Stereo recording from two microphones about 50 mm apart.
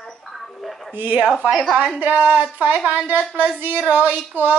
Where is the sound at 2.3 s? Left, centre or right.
Right.